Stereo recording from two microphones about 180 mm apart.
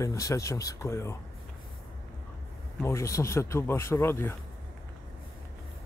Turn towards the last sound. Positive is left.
turn(degrees=15)  # may be behind; listen again after turning